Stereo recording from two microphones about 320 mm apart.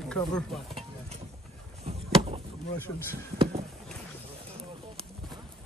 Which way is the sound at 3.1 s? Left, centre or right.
Centre.